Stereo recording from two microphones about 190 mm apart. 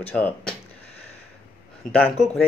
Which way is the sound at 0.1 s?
5° left (ahead or behind).